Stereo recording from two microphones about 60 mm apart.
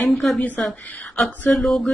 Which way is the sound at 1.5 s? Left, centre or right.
Centre.